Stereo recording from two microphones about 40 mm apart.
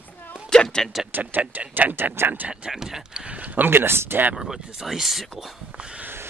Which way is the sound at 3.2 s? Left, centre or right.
Right.